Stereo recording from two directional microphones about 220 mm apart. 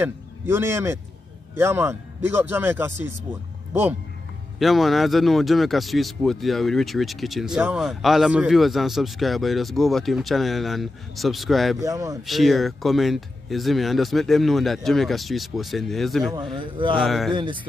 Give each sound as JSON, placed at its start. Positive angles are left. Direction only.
{"t": 0.0, "sound": "speech", "side_deg": -10}
{"t": 4.6, "sound": "speech", "side_deg": 0}
{"t": 11.8, "sound": "speech", "side_deg": -15}
{"t": 12.2, "sound": "speech", "side_deg": 0}
{"t": 16.3, "sound": "a man's voice", "side_deg": -20}
{"t": 17.0, "sound": "speech", "side_deg": 0}
{"t": 17.3, "sound": "a man's voice", "side_deg": -20}